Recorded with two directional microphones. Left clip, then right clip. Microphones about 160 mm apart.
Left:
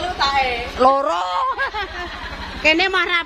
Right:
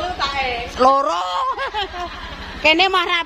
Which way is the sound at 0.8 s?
10° right (ahead or behind).